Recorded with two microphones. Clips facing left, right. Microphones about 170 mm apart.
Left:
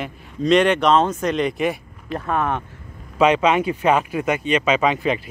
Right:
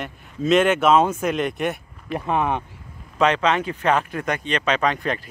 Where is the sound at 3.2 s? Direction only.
10° left (ahead or behind).